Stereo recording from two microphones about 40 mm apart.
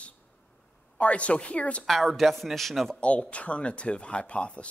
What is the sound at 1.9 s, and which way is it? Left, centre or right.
Speech, centre.